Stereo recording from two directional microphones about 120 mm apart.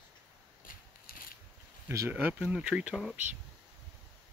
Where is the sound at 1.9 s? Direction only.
20° right (ahead or behind).